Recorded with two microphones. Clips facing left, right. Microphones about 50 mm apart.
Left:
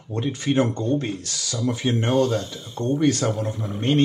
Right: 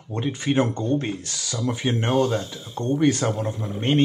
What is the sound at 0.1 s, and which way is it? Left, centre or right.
Speech, centre.